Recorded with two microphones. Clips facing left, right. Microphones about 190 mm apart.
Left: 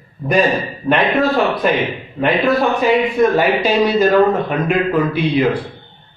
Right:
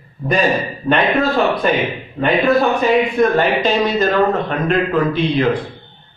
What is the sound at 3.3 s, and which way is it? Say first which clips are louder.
A man's voice: left 1 dB; 10° left (ahead or behind).